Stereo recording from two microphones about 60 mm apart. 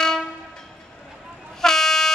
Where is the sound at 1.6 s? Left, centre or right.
Centre.